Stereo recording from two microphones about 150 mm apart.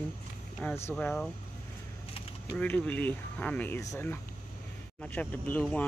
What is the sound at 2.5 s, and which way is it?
Speech, 10° left (ahead or behind).